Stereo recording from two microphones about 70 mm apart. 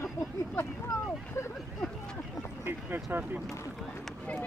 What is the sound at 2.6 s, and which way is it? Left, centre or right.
Speech, right.